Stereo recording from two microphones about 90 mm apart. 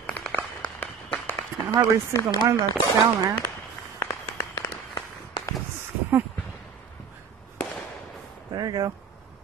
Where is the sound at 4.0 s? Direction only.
30° left (ahead or behind).